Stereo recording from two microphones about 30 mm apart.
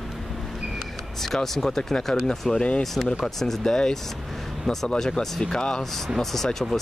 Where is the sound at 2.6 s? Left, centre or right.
Left.